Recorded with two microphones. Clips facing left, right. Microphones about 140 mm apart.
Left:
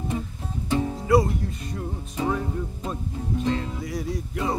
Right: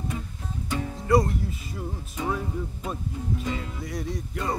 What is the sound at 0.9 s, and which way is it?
Music, centre (ahead or behind).